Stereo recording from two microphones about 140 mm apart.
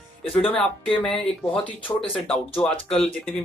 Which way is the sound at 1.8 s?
40° left (ahead or behind).